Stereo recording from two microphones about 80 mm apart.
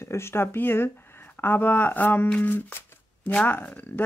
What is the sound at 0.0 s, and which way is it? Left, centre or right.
A man's voice, left.